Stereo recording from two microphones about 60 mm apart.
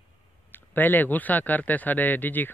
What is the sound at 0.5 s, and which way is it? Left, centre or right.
A man's voice, left.